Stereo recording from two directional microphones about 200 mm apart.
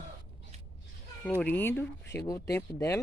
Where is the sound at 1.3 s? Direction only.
10° left (ahead or behind).